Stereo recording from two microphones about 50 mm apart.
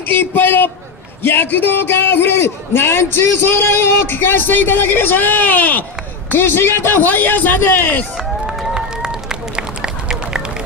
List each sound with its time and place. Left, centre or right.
0.0 s a man's voice: left
8.7 s run: centre